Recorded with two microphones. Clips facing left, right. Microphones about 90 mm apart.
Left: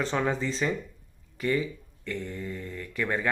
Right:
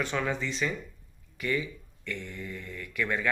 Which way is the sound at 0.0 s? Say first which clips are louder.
Left 3 dB; 35° left (ahead or behind).